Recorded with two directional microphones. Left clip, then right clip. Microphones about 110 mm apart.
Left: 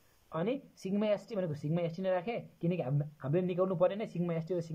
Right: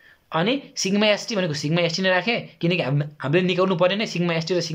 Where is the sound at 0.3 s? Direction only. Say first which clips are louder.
Right 13 dB; 45° left (ahead or behind).